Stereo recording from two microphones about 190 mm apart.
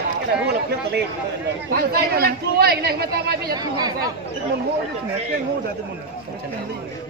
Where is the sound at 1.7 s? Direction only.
50° right (ahead or behind).